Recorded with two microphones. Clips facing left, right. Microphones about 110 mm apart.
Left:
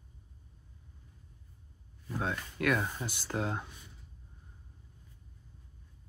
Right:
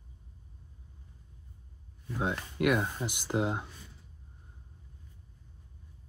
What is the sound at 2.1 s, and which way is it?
Speech, 20° right (ahead or behind).